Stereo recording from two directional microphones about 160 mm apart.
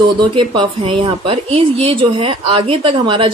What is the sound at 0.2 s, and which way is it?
A woman's voice, 30° right (ahead or behind).